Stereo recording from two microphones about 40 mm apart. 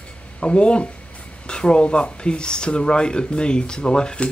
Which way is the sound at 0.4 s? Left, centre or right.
Left.